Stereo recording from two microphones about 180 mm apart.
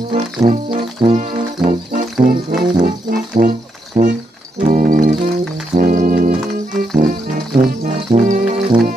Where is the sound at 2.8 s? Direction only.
50° right (ahead or behind).